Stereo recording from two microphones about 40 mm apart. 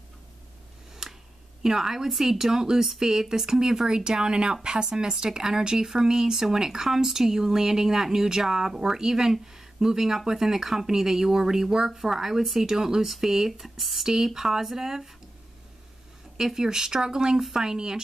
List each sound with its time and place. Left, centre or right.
1.6 s speech: centre
16.3 s speech: centre